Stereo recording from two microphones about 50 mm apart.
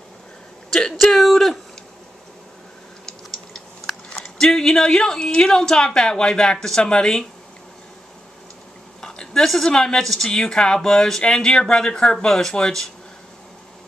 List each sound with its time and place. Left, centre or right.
0.7 s speech: centre
0.9 s speech: centre
3.1 s speech: centre
9.0 s a sound: centre
9.7 s speech: centre